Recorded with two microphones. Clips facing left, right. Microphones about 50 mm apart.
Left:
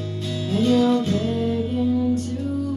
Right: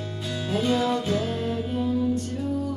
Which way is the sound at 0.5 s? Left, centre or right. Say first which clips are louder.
Left 5 dB; centre.